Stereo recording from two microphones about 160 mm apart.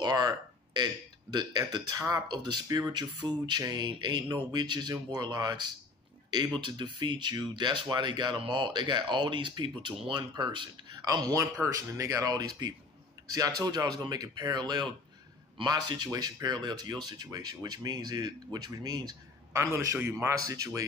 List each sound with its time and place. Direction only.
0.0 s a sound: 25° right (ahead or behind)
1.3 s speech: 25° right (ahead or behind)
13.6 s speech: 25° right (ahead or behind)